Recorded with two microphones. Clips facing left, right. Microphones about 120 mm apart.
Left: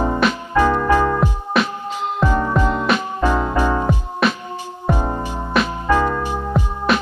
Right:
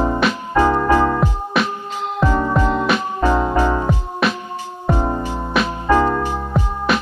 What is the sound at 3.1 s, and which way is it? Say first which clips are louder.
Music: right 2 dB; 15° right (ahead or behind).